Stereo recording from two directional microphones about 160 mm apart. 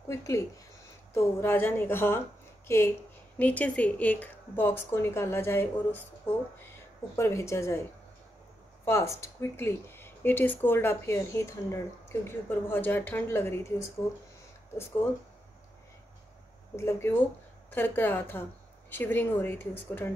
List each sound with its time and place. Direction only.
0.1 s speech: 15° left (ahead or behind)
8.8 s speech: 15° left (ahead or behind)
16.7 s speech: 15° left (ahead or behind)